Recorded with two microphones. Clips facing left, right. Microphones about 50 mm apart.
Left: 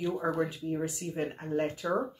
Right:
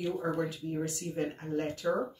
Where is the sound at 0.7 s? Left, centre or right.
Centre.